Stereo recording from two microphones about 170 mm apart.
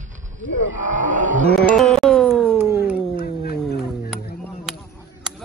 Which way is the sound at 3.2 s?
65° left (ahead or behind).